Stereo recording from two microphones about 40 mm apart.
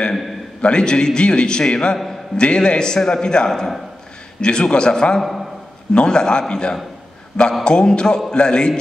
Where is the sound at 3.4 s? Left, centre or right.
Centre.